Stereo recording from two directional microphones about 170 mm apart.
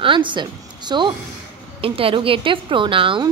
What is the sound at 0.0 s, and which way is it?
A woman's voice, 30° right (ahead or behind).